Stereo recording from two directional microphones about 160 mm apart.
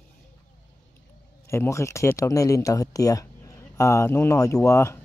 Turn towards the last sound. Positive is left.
turn(degrees=15)  # may be behind; listen again after turning